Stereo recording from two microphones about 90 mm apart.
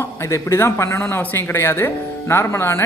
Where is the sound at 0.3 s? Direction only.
30° left (ahead or behind).